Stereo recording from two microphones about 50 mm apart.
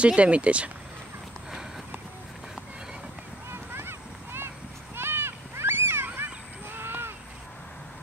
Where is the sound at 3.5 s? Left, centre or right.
Right.